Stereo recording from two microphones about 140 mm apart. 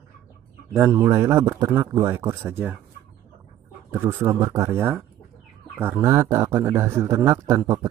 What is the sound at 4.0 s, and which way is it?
A man's voice, 20° right (ahead or behind).